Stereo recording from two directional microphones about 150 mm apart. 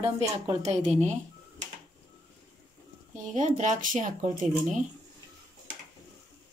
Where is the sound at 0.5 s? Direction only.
45° right (ahead or behind).